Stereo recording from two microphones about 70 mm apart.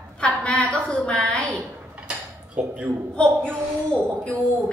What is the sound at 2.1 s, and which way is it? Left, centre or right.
Dishes, centre.